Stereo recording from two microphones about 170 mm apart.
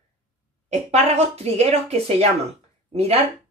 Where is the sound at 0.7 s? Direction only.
40° right (ahead or behind).